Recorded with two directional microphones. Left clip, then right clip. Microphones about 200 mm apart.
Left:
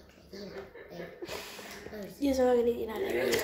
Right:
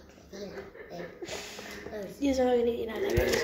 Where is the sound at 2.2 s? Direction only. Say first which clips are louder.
Even; 10° left (ahead or behind).